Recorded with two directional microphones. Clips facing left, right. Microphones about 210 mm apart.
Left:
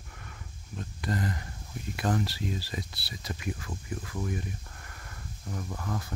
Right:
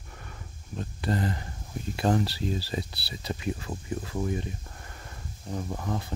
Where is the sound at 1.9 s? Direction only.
30° right (ahead or behind).